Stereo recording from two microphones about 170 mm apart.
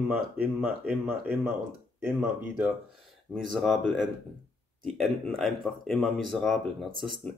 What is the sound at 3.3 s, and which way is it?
Speech, centre (ahead or behind).